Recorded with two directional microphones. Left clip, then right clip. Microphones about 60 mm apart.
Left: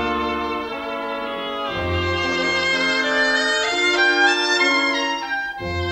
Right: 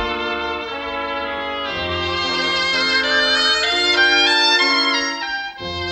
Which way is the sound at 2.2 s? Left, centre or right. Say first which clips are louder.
Right 1 dB; centre.